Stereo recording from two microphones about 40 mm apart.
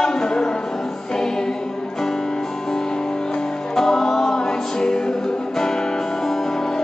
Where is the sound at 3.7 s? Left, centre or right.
Centre.